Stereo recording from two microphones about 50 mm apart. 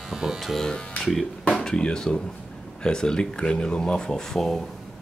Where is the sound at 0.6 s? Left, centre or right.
Centre.